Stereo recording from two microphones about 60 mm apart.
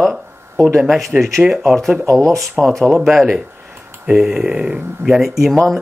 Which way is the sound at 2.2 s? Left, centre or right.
Right.